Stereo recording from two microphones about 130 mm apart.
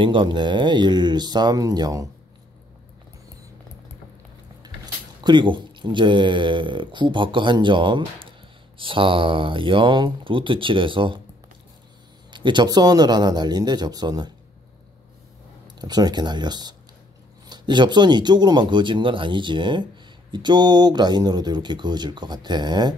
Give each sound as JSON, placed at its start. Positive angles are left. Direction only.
{"t": 0.0, "sound": "speech", "side_deg": -40}
{"t": 5.2, "sound": "speech", "side_deg": -35}
{"t": 12.3, "sound": "speech", "side_deg": -35}
{"t": 15.6, "sound": "speech", "side_deg": -30}